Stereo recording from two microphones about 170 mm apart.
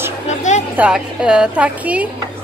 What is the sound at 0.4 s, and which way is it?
Music, 45° left (ahead or behind).